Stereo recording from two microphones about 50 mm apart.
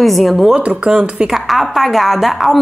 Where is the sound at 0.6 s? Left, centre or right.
Right.